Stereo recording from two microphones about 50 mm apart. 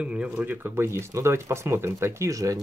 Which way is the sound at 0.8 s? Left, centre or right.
Right.